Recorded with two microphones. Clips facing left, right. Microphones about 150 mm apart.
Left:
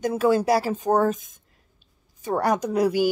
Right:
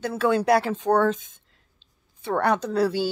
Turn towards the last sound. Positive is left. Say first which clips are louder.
# left 2 dB
turn(degrees=15)  # may be behind; listen again after turning